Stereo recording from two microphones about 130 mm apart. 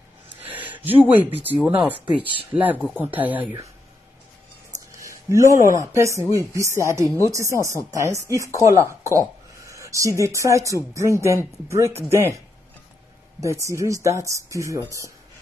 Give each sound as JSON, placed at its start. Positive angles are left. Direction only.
{"t": 0.4, "sound": "speech", "side_deg": -15}
{"t": 5.0, "sound": "speech", "side_deg": -25}
{"t": 13.4, "sound": "speech", "side_deg": -25}